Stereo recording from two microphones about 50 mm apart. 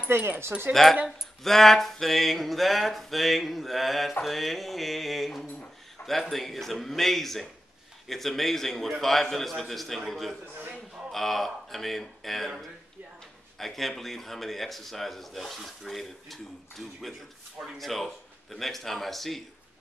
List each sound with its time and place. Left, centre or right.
0.0 s speech: right
1.4 s speech: centre